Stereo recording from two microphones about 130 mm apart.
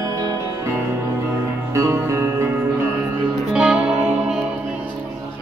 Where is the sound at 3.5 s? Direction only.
10° right (ahead or behind).